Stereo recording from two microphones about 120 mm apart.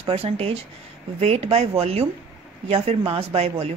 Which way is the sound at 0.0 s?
55° right (ahead or behind).